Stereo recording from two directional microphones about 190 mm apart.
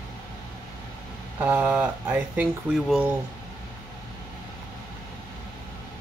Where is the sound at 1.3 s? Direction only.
10° right (ahead or behind).